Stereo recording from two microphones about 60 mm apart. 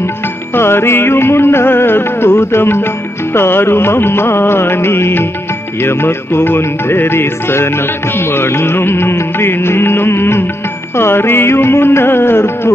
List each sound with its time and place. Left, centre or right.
0.6 s music: left